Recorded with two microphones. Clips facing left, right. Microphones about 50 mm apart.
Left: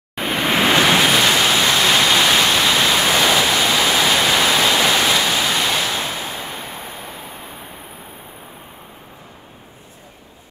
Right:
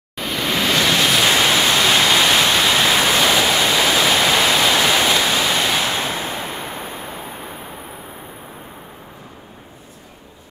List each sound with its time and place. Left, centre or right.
0.1 s waves: left
1.2 s pink noise: centre
3.4 s waterfall: centre
5.6 s waves: centre
5.9 s a sound: centre